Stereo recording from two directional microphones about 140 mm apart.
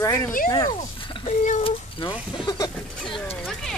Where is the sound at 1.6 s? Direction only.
35° left (ahead or behind).